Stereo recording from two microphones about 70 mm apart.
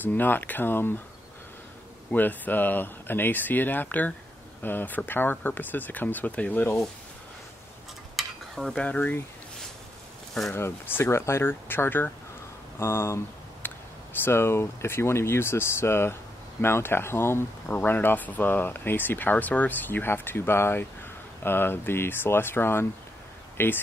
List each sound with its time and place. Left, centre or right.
0.0 s speech: left
2.0 s speech: left
8.2 s stir: centre
8.7 s speech: centre
10.5 s speech: left
12.7 s a sound: left
14.2 s speech: left